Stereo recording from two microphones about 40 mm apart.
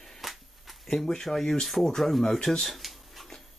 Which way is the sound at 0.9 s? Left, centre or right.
Centre.